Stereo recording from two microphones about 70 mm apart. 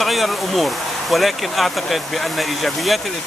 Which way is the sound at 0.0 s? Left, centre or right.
Centre.